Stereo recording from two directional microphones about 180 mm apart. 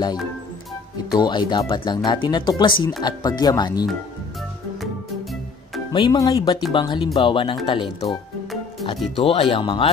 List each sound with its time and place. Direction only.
1.2 s speech: 25° left (ahead or behind)
5.9 s speech: 20° left (ahead or behind)